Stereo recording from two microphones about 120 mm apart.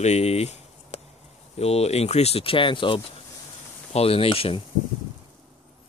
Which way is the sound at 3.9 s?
55° left (ahead or behind).